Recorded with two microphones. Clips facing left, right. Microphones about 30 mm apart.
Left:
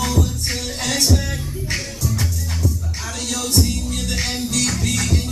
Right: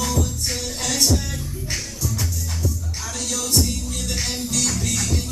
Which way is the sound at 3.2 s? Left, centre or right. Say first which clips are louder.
Left 2 dB; left.